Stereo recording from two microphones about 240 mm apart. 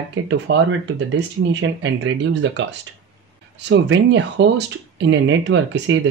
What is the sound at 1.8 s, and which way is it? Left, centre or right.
Speech, right.